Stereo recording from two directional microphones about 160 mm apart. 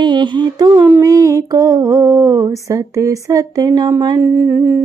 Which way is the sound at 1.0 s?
20° right (ahead or behind).